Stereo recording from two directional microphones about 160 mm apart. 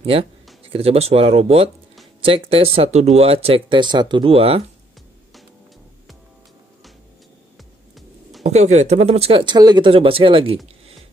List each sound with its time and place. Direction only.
0.0 s speech: 40° right (ahead or behind)
8.5 s speech: 45° right (ahead or behind)